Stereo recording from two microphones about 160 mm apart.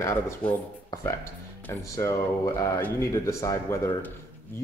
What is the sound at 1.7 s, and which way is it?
Speech, 20° left (ahead or behind).